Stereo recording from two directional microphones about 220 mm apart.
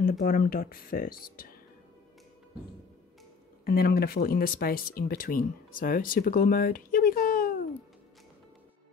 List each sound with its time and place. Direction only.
0.0 s speech: 40° left (ahead or behind)
3.6 s speech: 45° left (ahead or behind)